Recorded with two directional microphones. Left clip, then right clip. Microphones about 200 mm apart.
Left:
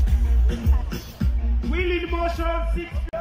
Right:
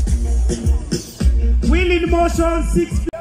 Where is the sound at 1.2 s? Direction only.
50° right (ahead or behind); by 2.9 s 70° right (ahead or behind).